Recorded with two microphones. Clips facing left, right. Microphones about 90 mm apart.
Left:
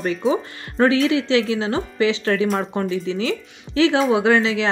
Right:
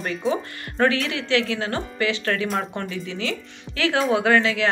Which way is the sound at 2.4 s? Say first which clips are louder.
Left 4 dB; centre (ahead or behind).